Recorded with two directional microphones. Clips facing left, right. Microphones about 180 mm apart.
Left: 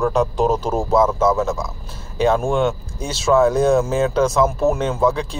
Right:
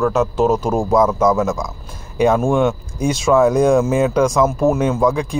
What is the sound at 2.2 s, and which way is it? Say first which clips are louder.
A man's voice: right 3 dB; 10° right (ahead or behind).